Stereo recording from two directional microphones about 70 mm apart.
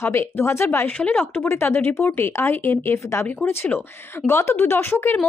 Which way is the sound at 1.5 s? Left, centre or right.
Left.